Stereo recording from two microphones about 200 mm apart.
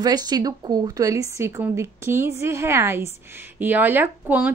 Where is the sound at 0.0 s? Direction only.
20° right (ahead or behind).